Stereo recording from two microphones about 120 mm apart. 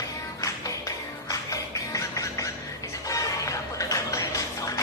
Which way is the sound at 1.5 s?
25° left (ahead or behind).